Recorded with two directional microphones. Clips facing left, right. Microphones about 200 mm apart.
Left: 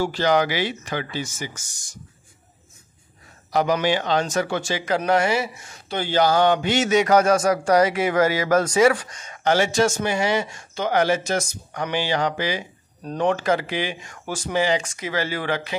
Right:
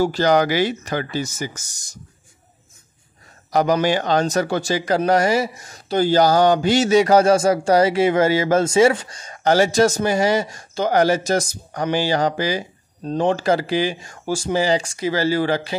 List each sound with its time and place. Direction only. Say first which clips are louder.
0.0 s speech: right 3 dB; 40° right (ahead or behind)
3.5 s speech: right 3 dB; 40° right (ahead or behind)
13.0 s speech: right 3 dB; 25° right (ahead or behind)